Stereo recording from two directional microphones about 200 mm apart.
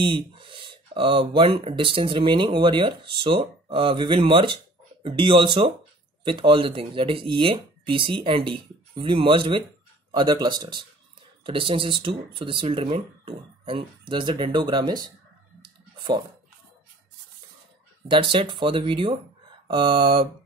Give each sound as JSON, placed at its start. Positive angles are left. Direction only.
{"t": 0.0, "sound": "speech", "side_deg": -25}
{"t": 15.6, "sound": "clicking", "side_deg": -25}
{"t": 18.3, "sound": "speech", "side_deg": -25}